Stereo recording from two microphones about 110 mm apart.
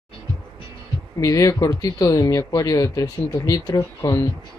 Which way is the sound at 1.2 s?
30° left (ahead or behind).